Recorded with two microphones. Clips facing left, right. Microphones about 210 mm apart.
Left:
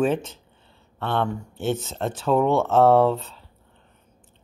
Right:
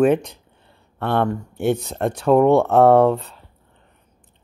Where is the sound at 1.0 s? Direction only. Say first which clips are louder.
Right 4 dB; 60° right (ahead or behind).